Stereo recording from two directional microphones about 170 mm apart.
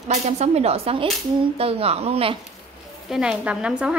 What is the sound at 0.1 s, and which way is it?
A woman's voice, 40° right (ahead or behind).